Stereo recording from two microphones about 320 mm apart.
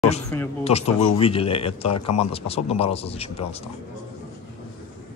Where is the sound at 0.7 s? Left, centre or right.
Centre.